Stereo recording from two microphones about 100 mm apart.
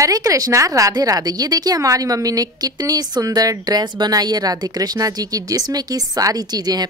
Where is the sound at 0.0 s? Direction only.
35° right (ahead or behind).